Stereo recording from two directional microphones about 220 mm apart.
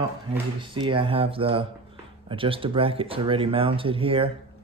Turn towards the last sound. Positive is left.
turn(degrees=-25)  # may be behind; listen again after turning